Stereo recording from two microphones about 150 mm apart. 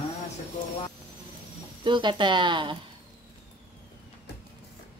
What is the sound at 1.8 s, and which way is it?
Speech, 30° right (ahead or behind).